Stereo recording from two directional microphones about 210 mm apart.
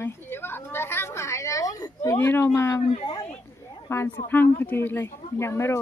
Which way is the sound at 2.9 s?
25° left (ahead or behind).